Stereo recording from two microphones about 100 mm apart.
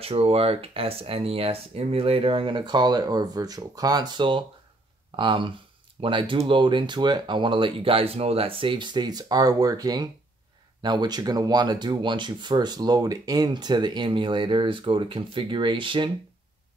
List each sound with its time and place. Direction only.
0.0 s speech: 75° right (ahead or behind); by 16.1 s 55° right (ahead or behind)